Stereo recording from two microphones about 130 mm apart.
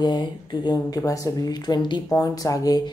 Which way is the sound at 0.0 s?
35° left (ahead or behind).